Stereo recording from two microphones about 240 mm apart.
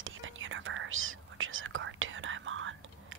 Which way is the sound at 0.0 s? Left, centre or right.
Right.